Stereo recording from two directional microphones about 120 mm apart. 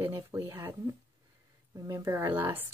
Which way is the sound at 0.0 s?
20° right (ahead or behind).